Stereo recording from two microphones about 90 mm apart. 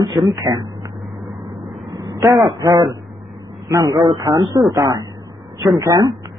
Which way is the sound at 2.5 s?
45° right (ahead or behind).